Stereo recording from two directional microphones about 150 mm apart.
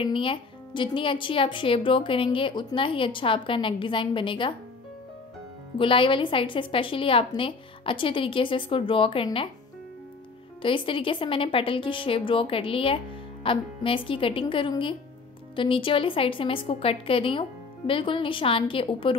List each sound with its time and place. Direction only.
0.0 s speech: 35° left (ahead or behind)
5.8 s speech: 35° left (ahead or behind)
10.6 s speech: 35° left (ahead or behind)